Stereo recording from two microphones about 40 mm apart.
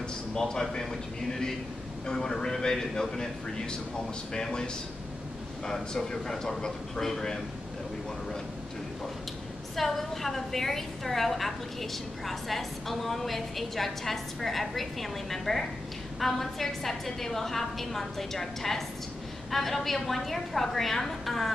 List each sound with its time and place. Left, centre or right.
0.3 s a woman's voice: centre
5.7 s a woman's voice: centre
9.8 s a woman's voice: centre